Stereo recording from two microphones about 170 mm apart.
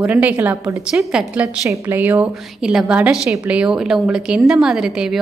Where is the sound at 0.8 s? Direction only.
5° right (ahead or behind).